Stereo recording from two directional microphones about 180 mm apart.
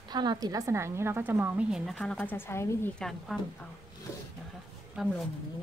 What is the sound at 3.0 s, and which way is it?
Speech, centre (ahead or behind).